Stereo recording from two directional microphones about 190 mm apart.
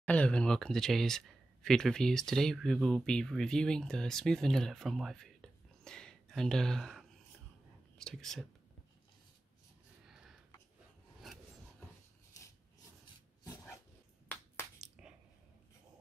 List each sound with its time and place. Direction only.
0.0 s speech: 5° left (ahead or behind)
10.0 s a sound: 5° right (ahead or behind)
13.4 s dog: 20° left (ahead or behind)
15.0 s squish: 5° right (ahead or behind)